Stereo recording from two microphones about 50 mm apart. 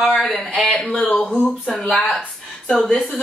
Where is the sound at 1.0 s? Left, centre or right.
Left.